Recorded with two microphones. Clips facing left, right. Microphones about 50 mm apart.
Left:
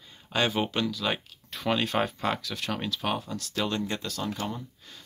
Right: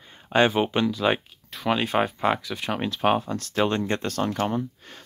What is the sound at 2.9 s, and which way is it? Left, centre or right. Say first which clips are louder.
Speech: right 8 dB; right.